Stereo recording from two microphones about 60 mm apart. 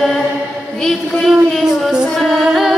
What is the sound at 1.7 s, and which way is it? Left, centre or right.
Music, centre.